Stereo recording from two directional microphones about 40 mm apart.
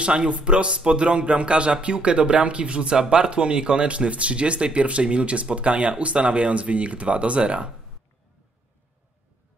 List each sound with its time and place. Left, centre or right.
0.0 s speech: right